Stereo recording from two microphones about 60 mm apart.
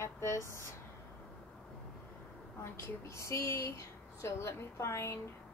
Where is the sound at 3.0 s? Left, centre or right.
Left.